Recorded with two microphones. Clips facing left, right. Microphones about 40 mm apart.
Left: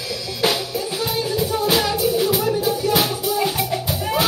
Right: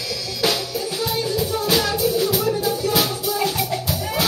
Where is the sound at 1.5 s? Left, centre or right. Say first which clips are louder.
Left 2 dB; centre.